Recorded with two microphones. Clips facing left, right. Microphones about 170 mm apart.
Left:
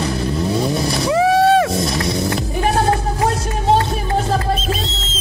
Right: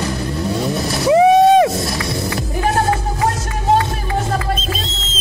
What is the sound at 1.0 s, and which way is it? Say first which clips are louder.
Vehicle: right 5 dB; 20° right (ahead or behind).